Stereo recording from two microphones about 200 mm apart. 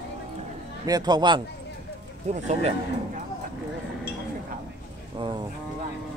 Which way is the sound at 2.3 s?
35° right (ahead or behind).